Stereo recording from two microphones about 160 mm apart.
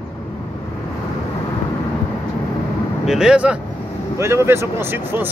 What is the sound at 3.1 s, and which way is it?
Speech, 5° right (ahead or behind).